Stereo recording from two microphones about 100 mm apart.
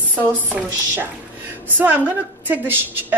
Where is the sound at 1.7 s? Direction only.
20° right (ahead or behind).